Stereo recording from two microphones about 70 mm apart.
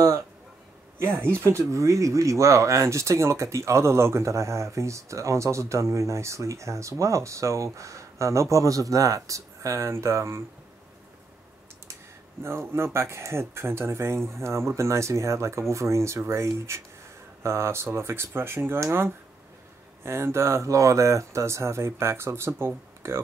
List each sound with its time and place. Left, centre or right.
0.9 s speech: right
1.6 s speech: right
12.4 s speech: right